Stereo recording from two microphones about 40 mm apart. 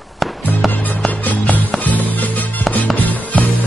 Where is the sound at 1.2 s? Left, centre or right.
Left.